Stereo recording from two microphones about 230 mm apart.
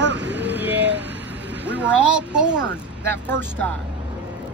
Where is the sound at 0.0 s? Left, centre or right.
Right.